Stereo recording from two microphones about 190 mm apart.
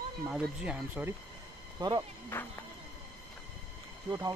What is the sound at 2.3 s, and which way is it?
Music, 10° left (ahead or behind).